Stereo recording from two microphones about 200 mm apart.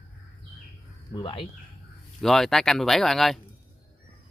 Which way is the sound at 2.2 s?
Centre (ahead or behind).